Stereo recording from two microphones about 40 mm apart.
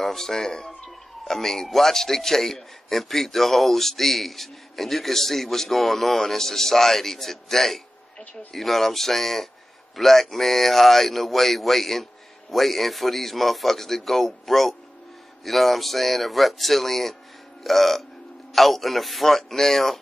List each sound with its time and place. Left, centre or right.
0.0 s a man's voice: centre